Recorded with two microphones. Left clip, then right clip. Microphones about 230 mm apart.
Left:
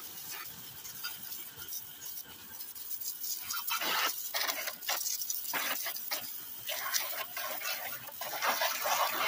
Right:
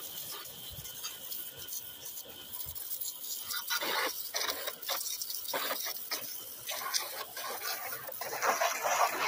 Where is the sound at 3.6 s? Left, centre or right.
Left.